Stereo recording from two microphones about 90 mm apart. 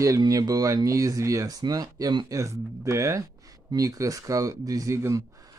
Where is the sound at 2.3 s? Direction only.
35° right (ahead or behind).